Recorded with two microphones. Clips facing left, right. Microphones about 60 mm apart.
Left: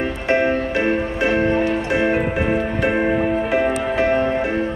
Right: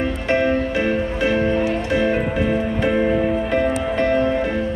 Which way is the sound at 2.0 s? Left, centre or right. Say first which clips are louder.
Left 1 dB; left.